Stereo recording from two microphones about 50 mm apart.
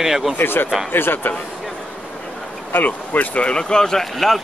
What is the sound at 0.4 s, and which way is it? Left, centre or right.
Speech, left.